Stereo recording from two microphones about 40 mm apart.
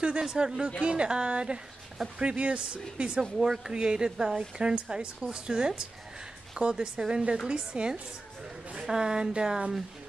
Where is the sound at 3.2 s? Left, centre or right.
Centre.